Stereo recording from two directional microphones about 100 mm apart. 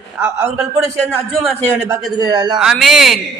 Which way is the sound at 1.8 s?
40° right (ahead or behind).